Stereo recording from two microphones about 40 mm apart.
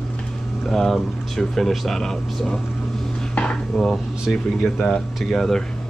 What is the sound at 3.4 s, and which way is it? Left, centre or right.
Dishes, left.